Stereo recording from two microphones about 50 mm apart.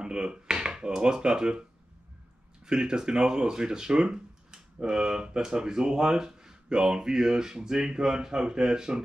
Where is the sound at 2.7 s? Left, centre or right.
Centre.